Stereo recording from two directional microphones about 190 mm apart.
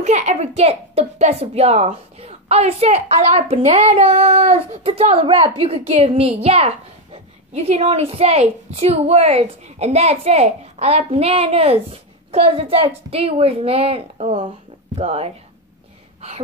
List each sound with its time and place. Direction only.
0.0 s a woman's voice: 35° right (ahead or behind)